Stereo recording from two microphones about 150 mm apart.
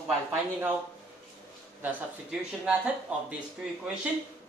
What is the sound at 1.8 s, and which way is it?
Speech, 10° right (ahead or behind).